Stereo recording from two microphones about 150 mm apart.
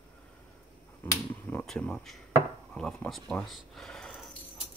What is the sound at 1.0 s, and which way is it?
Finger snapping, 10° left (ahead or behind).